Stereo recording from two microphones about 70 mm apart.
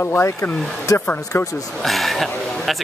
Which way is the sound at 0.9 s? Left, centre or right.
Left.